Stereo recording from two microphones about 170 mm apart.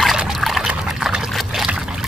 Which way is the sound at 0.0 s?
Centre (ahead or behind).